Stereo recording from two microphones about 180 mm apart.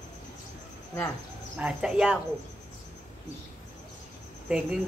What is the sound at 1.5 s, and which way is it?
Speech, 5° right (ahead or behind).